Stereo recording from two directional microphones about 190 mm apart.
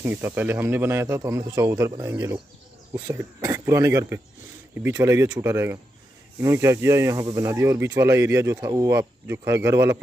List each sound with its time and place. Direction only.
0.0 s speech: 10° right (ahead or behind)